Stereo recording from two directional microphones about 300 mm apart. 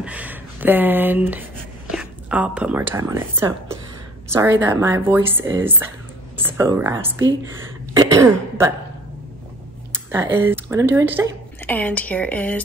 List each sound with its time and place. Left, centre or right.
0.0 s a sound: centre
4.3 s speech: centre
7.9 s throat clearing: centre
10.1 s speech: centre
11.6 s speech: centre